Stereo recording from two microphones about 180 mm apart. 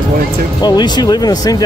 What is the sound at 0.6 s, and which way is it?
Speech, 25° left (ahead or behind).